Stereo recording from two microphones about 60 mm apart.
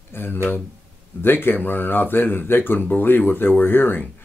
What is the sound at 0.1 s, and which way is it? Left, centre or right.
Speech, left.